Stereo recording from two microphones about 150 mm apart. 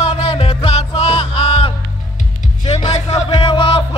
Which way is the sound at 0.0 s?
45° left (ahead or behind).